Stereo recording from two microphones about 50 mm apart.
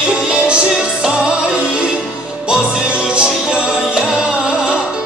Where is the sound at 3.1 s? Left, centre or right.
Centre.